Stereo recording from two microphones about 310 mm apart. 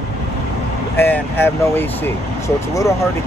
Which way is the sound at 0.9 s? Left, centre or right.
Centre.